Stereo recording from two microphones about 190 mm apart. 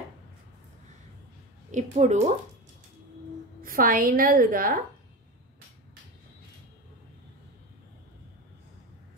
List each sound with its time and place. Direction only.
1.7 s speech: 40° right (ahead or behind)
3.6 s a woman's voice: 50° right (ahead or behind)